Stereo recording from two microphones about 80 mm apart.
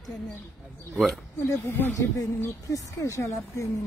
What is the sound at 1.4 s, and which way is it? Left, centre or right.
A woman's voice, left.